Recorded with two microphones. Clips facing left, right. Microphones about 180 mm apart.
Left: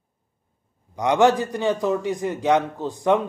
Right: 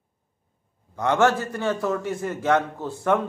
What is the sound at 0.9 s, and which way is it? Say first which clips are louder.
A man's voice: left 3 dB; 15° left (ahead or behind).